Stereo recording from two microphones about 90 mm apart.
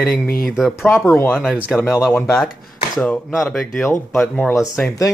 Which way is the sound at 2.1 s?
25° left (ahead or behind).